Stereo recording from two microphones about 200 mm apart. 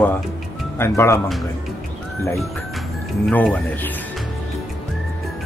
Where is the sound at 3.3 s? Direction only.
5° left (ahead or behind).